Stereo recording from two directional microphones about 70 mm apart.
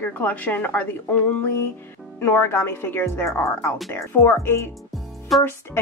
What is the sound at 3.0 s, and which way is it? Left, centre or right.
A woman's voice, left.